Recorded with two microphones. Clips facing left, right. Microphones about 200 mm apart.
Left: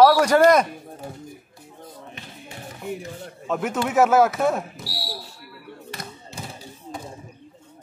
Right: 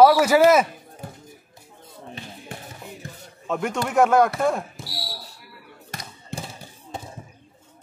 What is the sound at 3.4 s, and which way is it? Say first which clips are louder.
Speech: left 1 dB; centre (ahead or behind).